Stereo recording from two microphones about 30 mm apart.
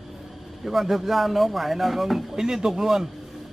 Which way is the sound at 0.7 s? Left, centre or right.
Centre.